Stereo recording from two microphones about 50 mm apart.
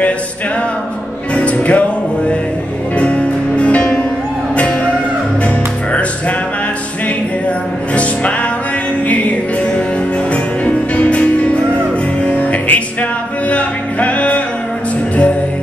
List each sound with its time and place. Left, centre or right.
1.3 s music: left
3.0 s music: left
7.9 s music: left
10.3 s music: left